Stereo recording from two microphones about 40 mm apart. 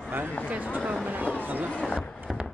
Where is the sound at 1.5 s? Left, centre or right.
Right.